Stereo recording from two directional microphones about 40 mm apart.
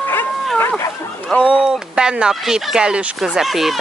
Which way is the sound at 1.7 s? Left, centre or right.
Right.